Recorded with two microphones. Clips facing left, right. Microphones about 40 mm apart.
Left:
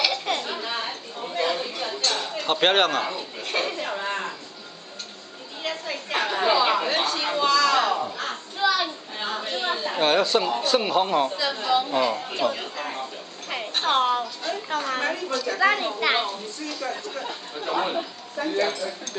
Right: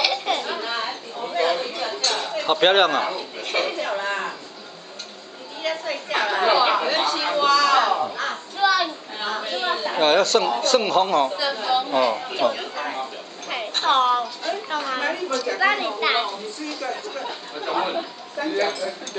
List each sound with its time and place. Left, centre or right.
0.0 s chatter: centre
5.6 s chatter: centre
10.9 s speech: centre
13.5 s a sound: centre
15.4 s speech: centre